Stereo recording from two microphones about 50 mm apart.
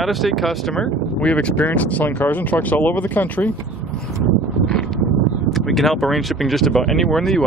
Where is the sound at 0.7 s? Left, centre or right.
Left.